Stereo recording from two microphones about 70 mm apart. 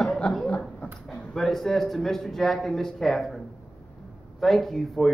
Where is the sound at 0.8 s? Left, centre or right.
Centre.